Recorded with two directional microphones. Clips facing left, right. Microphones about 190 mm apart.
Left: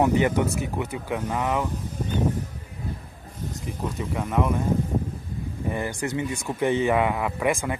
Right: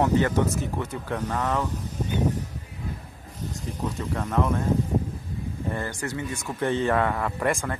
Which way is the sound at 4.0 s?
Centre (ahead or behind).